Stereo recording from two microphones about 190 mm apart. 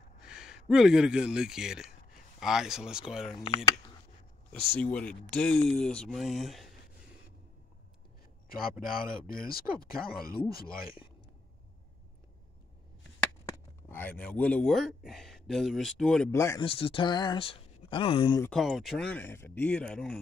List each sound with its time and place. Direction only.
0.2 s speech: 5° right (ahead or behind)
3.3 s speech: 20° left (ahead or behind)
4.5 s speech: 5° left (ahead or behind)
8.5 s speech: 50° left (ahead or behind)
13.8 s speech: 10° left (ahead or behind)
16.3 s speech: 15° left (ahead or behind)
16.6 s speech: 30° left (ahead or behind)
18.4 s speech: centre (ahead or behind)